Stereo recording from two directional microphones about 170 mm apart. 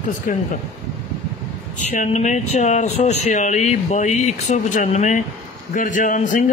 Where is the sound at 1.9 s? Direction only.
45° left (ahead or behind).